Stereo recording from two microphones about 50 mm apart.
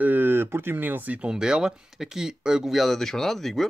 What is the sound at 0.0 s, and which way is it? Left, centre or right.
Speech, right.